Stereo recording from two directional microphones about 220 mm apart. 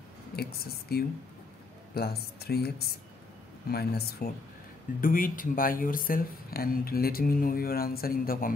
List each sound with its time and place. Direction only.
0.4 s speech: 45° left (ahead or behind)